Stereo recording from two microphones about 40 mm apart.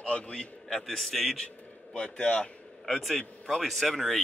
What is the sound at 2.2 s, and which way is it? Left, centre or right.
Speech, left.